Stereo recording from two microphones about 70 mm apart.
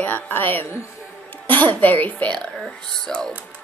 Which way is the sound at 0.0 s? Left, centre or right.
Left.